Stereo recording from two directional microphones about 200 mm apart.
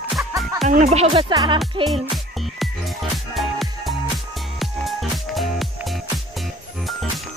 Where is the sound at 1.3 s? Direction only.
20° right (ahead or behind).